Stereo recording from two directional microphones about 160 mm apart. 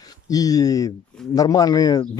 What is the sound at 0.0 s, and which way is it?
Speech, 25° left (ahead or behind).